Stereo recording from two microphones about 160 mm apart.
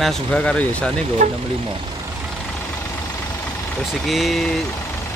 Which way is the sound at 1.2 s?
45° right (ahead or behind).